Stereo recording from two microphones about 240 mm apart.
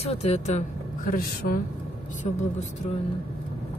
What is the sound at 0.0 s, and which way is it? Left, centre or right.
A woman's voice, left.